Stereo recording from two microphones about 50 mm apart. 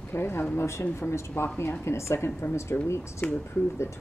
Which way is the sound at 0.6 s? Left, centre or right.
Left.